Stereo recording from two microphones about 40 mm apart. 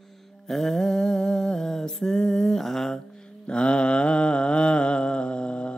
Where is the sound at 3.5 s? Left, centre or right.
Left.